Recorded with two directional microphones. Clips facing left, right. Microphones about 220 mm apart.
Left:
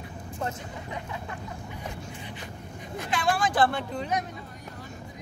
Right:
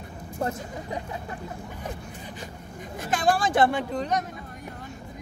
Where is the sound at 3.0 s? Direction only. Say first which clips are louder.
Right 4 dB; 50° right (ahead or behind).